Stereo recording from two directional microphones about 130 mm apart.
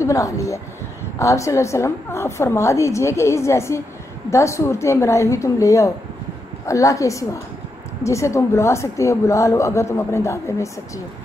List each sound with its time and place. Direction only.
0.0 s a woman's voice: 25° left (ahead or behind)